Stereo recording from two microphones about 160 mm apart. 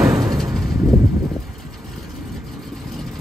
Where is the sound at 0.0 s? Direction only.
20° right (ahead or behind).